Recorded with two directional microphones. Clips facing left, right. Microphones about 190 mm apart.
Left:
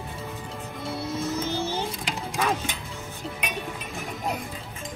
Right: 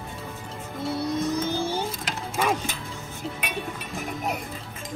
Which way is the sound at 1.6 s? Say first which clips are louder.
Right 1 dB; 10° right (ahead or behind).